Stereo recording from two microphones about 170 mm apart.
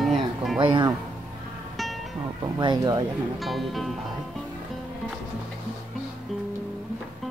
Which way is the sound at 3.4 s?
Centre (ahead or behind).